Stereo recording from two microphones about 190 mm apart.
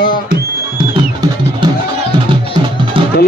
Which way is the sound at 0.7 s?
25° right (ahead or behind).